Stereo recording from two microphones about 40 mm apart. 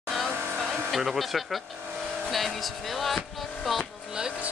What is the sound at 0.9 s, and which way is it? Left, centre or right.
Speech, centre.